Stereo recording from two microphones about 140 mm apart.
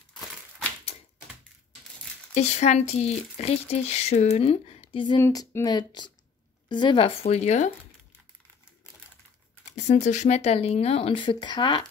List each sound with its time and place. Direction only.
2.3 s speech: 55° left (ahead or behind)
5.2 s speech: 20° left (ahead or behind)
7.2 s speech: 50° left (ahead or behind)
9.8 s speech: 55° left (ahead or behind); by 11.8 s 35° left (ahead or behind)